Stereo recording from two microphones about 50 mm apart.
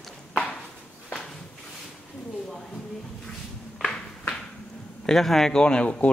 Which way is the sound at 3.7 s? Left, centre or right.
Centre.